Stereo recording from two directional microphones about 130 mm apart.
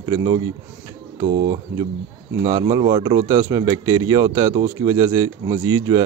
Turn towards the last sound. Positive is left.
turn(degrees=-25)  # may be behind; listen again after turning